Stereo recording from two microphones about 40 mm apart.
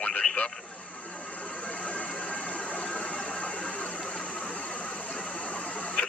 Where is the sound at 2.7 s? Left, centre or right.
Left.